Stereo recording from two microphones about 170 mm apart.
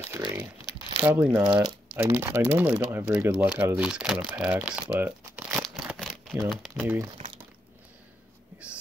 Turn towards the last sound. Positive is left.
turn(degrees=-10)  # may be behind; listen again after turning